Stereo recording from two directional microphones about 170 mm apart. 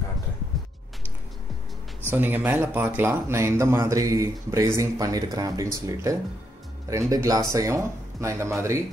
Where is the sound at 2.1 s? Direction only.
10° right (ahead or behind).